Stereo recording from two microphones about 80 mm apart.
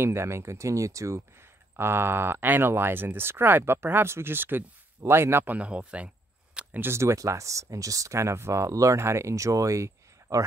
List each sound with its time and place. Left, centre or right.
0.0 s speech: right
1.8 s speech: right
6.8 s speech: right